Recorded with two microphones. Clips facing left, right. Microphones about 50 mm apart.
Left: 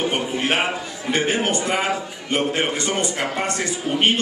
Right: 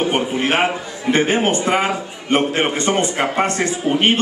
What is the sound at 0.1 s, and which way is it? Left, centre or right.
A man's voice, right.